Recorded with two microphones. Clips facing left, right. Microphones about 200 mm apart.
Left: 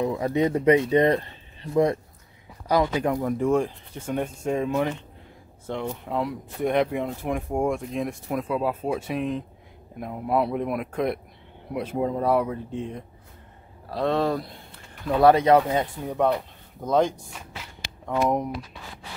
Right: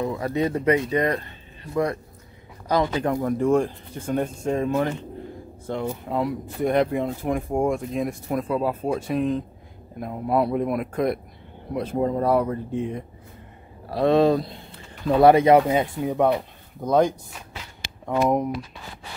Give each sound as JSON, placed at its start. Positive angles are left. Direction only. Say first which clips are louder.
{"t": 0.0, "sound": "speech", "louder": "left 1 dB", "side_deg": 15}
{"t": 2.7, "sound": "speech", "louder": "even", "side_deg": 10}